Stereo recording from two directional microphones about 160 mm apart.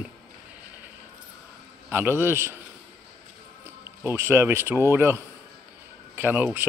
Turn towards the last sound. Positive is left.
turn(degrees=-10)  # may be behind; listen again after turning